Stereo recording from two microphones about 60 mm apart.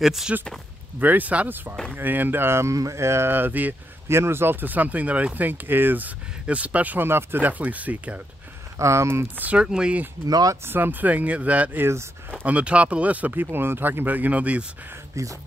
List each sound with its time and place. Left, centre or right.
0.0 s speech: centre
0.9 s speech: right
2.7 s a sound: right
4.1 s speech: right
7.1 s speech: right
8.7 s a sound: right
9.6 s speech: centre
10.2 s speech: right
10.6 s speech: right
11.8 s a sound: right
12.3 s speech: right
15.2 s speech: right